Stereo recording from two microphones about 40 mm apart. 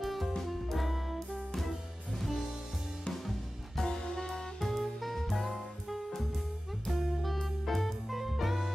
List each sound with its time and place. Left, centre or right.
0.0 s music: centre
2.1 s music: centre
3.8 s music: centre
4.6 s music: centre